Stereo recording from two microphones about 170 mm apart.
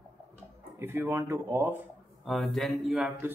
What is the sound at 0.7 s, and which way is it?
Speech, 15° right (ahead or behind).